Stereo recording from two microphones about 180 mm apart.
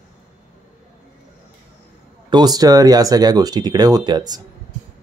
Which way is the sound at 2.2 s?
25° right (ahead or behind).